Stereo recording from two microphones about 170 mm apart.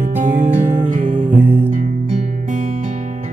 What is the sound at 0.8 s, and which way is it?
Music, 50° right (ahead or behind).